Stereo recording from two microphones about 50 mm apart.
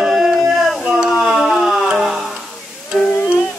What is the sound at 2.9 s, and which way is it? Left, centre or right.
Music, centre.